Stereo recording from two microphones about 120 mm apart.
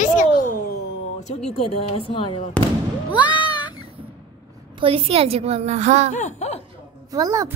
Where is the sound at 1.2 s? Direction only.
65° left (ahead or behind).